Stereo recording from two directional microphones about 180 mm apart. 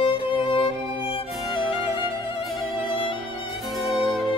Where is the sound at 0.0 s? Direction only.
30° left (ahead or behind).